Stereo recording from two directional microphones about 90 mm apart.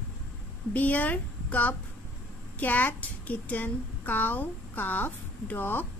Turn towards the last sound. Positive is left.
turn(degrees=20)  # may be behind; listen again after turning